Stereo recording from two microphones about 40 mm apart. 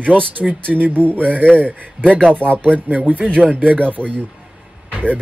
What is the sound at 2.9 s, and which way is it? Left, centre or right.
Speech, right.